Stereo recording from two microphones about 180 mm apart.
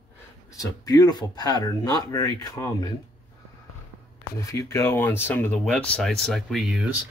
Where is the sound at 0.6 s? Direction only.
20° left (ahead or behind).